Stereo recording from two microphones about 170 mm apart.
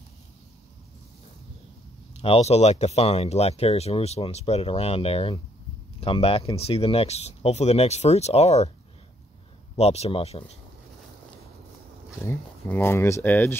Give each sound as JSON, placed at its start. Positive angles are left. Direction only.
{"t": 2.2, "sound": "speech", "side_deg": 35}
{"t": 9.8, "sound": "speech", "side_deg": 40}
{"t": 12.2, "sound": "speech", "side_deg": 15}